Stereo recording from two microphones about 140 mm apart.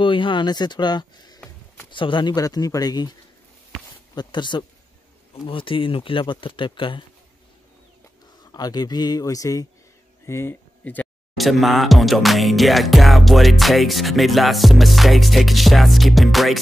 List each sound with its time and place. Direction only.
0.0 s speech: 35° left (ahead or behind)
8.5 s speech: 30° left (ahead or behind); by 11.1 s 10° left (ahead or behind)
11.3 s music: centre (ahead or behind)